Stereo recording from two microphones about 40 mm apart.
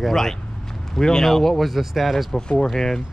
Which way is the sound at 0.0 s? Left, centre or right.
Centre.